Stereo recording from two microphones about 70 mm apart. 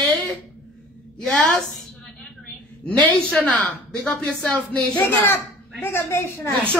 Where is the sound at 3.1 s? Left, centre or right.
Centre.